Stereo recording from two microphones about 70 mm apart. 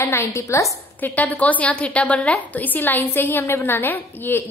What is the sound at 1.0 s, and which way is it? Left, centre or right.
A woman's voice, left.